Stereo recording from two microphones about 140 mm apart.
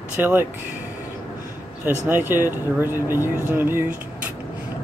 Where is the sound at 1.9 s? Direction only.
15° right (ahead or behind).